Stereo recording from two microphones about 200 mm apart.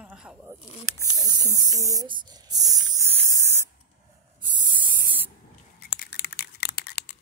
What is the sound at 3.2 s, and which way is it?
Spray, 15° right (ahead or behind).